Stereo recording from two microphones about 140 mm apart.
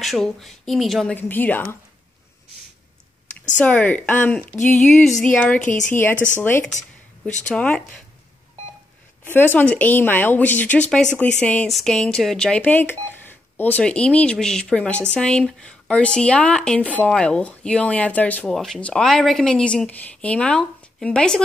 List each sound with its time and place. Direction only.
0.0 s speech: centre (ahead or behind)
1.1 s speech: 10° left (ahead or behind)
3.5 s speech: 10° left (ahead or behind)
5.6 s a woman's voice: 65° left (ahead or behind)
6.4 s speech: 15° left (ahead or behind)
9.2 s speech: 15° left (ahead or behind)